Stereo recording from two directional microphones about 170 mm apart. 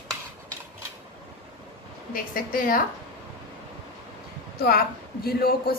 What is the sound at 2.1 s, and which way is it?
Speech, 55° left (ahead or behind).